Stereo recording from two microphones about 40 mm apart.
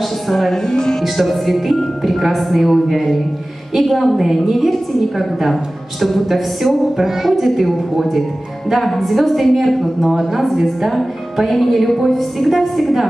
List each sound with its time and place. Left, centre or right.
0.3 s a woman's voice: centre
0.6 s music: centre
1.0 s a woman's voice: centre